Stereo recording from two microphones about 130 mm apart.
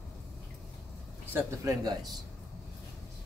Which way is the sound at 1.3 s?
30° right (ahead or behind).